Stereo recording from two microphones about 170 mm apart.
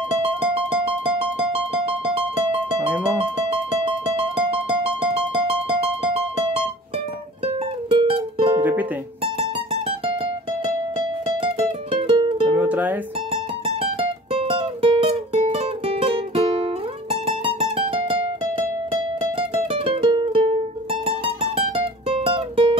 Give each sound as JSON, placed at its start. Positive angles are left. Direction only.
{"t": 0.1, "sound": "music", "side_deg": -35}
{"t": 4.2, "sound": "music", "side_deg": -30}
{"t": 7.9, "sound": "music", "side_deg": -30}
{"t": 9.7, "sound": "music", "side_deg": -30}
{"t": 12.5, "sound": "music", "side_deg": -10}
{"t": 13.3, "sound": "music", "side_deg": -35}